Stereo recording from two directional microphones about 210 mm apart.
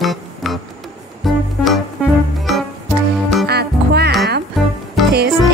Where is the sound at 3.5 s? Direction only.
50° right (ahead or behind).